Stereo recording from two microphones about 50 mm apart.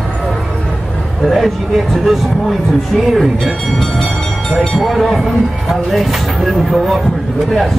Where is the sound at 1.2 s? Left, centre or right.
Centre.